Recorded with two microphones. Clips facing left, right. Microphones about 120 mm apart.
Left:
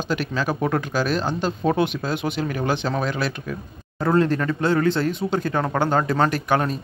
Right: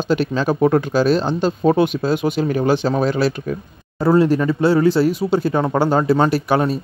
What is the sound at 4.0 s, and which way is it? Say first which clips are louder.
Speech: right 5 dB; 10° right (ahead or behind).